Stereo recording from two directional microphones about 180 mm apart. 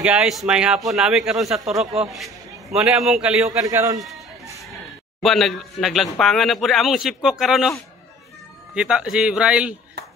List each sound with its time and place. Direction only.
0.0 s speech: 5° right (ahead or behind)
3.6 s a man's voice: 15° right (ahead or behind)
5.2 s speech: centre (ahead or behind)
8.7 s speech: 5° right (ahead or behind)